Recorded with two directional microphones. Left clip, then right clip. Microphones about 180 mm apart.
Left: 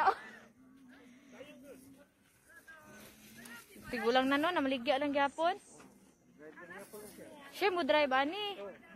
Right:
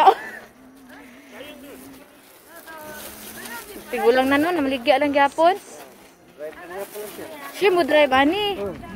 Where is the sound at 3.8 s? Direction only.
5° right (ahead or behind).